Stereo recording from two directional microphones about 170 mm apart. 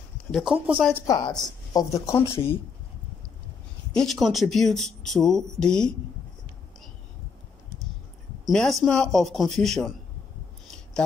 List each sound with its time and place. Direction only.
0.3 s speech: centre (ahead or behind)
0.9 s speech: 20° left (ahead or behind)
3.9 s speech: centre (ahead or behind)
8.5 s speech: centre (ahead or behind)